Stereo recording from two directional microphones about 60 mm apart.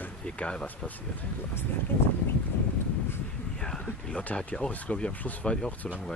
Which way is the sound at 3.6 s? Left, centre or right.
Centre.